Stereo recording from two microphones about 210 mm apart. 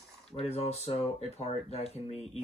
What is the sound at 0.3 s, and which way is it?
Speech, 30° left (ahead or behind).